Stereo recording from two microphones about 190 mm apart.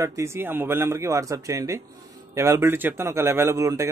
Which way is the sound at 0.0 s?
15° right (ahead or behind).